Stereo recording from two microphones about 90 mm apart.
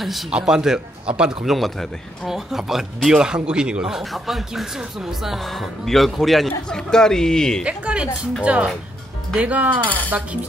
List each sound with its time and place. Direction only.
0.0 s a man's voice: 5° right (ahead or behind)
7.6 s speech: 10° right (ahead or behind)